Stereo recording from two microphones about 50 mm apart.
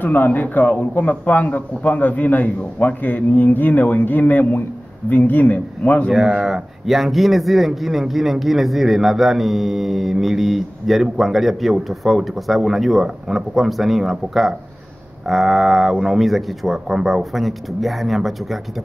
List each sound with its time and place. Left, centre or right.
0.0 s a man's voice: left
6.4 s a man's voice: centre